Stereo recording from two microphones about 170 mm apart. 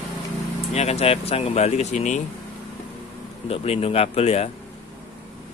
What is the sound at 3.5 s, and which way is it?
Speech, 35° left (ahead or behind).